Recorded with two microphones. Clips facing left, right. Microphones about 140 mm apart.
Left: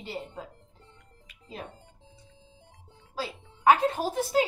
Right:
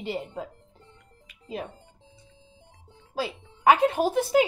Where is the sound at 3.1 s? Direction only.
15° right (ahead or behind).